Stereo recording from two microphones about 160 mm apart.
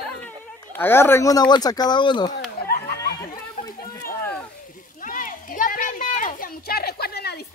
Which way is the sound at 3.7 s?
65° left (ahead or behind).